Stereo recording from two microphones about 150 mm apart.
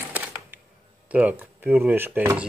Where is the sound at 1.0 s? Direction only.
10° right (ahead or behind).